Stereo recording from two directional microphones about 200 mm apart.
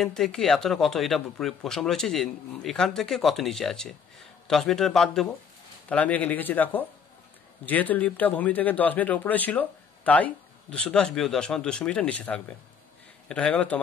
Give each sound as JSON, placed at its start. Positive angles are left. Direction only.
{"t": 0.0, "sound": "a man's voice", "side_deg": 5}